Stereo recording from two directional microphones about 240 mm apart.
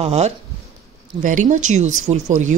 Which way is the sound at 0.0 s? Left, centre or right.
Right.